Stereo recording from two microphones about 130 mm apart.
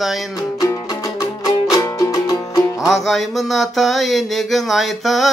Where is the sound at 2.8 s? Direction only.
Centre (ahead or behind).